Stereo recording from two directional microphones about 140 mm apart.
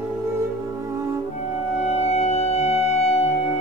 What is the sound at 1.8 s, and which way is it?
Music, 50° left (ahead or behind).